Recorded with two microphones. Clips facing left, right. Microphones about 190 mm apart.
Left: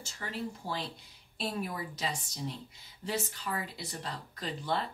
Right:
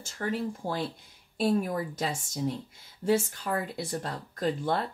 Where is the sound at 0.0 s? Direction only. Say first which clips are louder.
Right 7 dB; 50° right (ahead or behind).